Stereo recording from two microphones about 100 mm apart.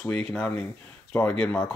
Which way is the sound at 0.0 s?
5° left (ahead or behind).